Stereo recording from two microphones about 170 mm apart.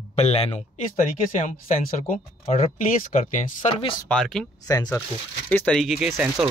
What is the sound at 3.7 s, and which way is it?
Speech, 25° left (ahead or behind).